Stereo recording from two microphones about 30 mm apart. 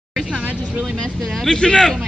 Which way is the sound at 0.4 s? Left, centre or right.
Right.